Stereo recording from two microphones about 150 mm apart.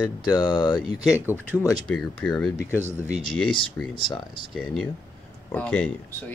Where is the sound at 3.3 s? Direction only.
35° left (ahead or behind).